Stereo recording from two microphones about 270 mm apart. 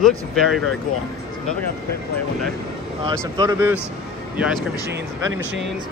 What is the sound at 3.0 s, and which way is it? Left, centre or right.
Speech, centre.